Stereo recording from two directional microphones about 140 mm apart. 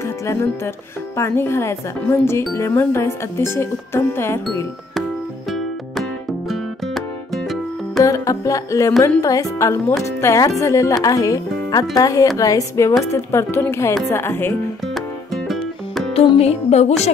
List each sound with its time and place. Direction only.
1.1 s speech: 20° left (ahead or behind)
8.0 s speech: 25° left (ahead or behind)
16.1 s music: 45° left (ahead or behind)